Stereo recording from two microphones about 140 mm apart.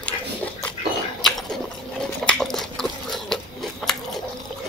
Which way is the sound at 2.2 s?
5° left (ahead or behind).